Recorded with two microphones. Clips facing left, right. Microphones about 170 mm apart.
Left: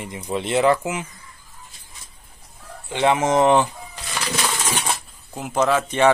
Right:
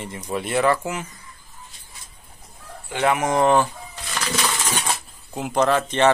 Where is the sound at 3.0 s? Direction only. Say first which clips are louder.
Left 2 dB; 25° left (ahead or behind).